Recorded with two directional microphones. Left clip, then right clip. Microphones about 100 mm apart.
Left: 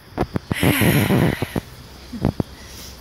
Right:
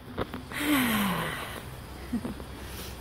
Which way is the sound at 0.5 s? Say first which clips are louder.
Left 8 dB; 15° right (ahead or behind).